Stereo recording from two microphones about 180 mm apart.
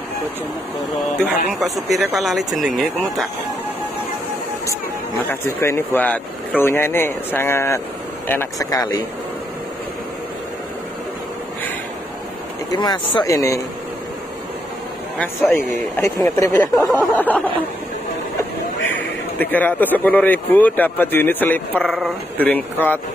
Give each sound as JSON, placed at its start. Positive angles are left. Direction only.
{"t": 1.6, "sound": "speech", "side_deg": 0}
{"t": 5.3, "sound": "speech", "side_deg": 15}
{"t": 12.7, "sound": "speech", "side_deg": 25}
{"t": 15.1, "sound": "speech", "side_deg": 10}
{"t": 18.9, "sound": "speech", "side_deg": 10}